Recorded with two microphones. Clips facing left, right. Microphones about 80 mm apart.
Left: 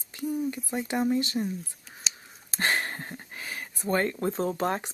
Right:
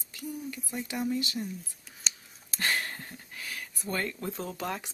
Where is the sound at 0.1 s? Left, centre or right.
Left.